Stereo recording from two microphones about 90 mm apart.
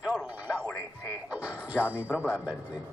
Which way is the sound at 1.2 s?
15° right (ahead or behind).